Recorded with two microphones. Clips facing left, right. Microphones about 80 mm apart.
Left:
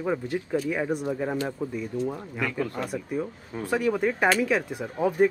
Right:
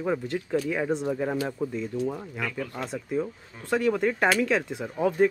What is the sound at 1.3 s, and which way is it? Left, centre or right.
Speech, centre.